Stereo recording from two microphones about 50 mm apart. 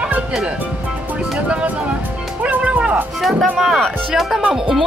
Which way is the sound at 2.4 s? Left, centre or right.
Right.